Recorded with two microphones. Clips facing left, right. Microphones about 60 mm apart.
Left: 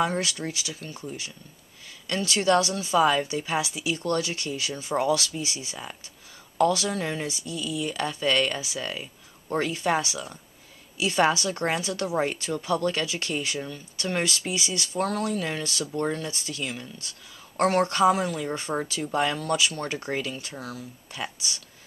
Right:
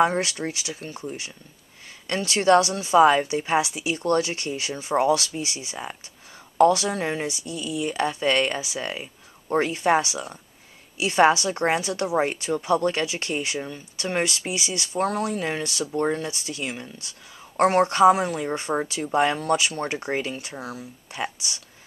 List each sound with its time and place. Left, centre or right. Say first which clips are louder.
0.0 s speech: right 5 dB; right
2.0 s speech: right 4 dB; right